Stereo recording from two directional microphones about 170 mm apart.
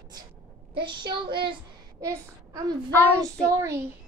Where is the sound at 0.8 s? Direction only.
25° right (ahead or behind).